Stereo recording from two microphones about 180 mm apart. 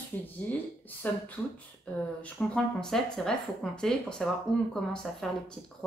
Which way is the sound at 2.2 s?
5° left (ahead or behind).